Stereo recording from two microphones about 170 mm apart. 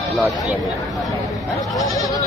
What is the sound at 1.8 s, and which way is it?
Goat, 20° left (ahead or behind).